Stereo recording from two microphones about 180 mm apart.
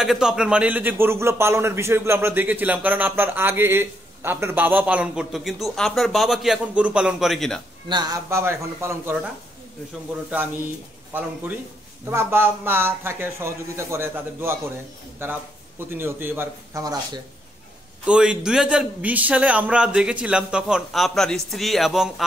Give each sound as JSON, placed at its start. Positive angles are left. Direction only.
{"t": 0.0, "sound": "a man's voice", "side_deg": 0}
{"t": 7.9, "sound": "a man's voice", "side_deg": -20}
{"t": 12.1, "sound": "a man's voice", "side_deg": -15}
{"t": 18.0, "sound": "a man's voice", "side_deg": -5}